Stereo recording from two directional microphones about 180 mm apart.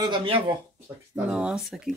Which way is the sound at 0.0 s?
30° right (ahead or behind).